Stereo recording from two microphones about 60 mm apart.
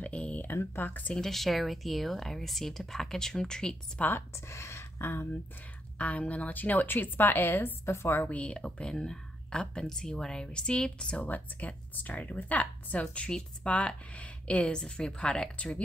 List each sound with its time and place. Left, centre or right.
0.0 s speech: left
0.4 s a woman's voice: left
1.1 s speech: centre
4.0 s speech: left
4.5 s speech: left
5.9 s a woman's voice: left
8.2 s speech: left